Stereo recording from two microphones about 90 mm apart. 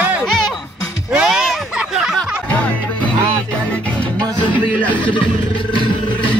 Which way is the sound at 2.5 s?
15° left (ahead or behind).